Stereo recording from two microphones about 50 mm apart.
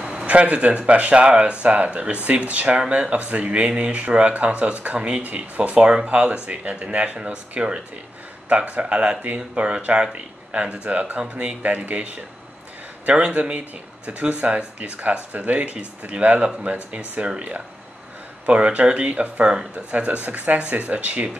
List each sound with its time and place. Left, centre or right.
0.0 s speech: centre
18.4 s speech: right
19.7 s speech: right